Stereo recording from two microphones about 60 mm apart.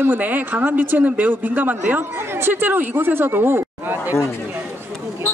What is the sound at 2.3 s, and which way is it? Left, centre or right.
Speech, right.